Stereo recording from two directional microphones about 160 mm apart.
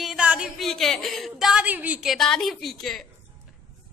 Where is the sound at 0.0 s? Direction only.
5° right (ahead or behind).